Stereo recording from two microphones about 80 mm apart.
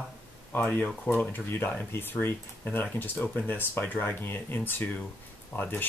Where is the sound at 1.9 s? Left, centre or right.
Left.